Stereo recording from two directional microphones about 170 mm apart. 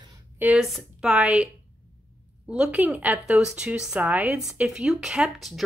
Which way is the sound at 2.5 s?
5° right (ahead or behind).